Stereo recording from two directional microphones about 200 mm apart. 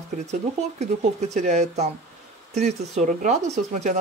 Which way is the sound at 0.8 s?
35° right (ahead or behind).